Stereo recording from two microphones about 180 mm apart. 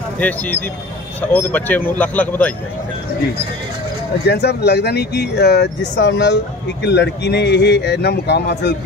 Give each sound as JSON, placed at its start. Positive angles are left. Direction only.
{"t": 0.2, "sound": "speech", "side_deg": 10}
{"t": 4.3, "sound": "speech", "side_deg": 65}